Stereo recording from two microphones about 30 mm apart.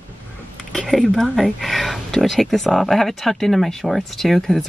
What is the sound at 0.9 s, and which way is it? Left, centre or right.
Speech, centre.